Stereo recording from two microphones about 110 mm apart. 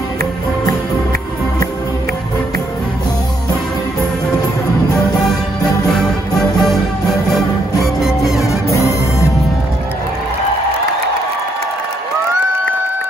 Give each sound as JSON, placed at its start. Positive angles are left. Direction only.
{"t": 5.9, "sound": "music", "side_deg": 0}
{"t": 8.4, "sound": "music", "side_deg": 30}